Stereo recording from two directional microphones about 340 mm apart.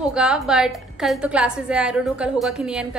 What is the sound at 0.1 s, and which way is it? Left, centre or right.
A woman's voice, centre.